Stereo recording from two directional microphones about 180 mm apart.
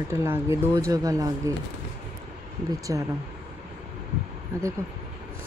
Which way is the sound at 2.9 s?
20° right (ahead or behind).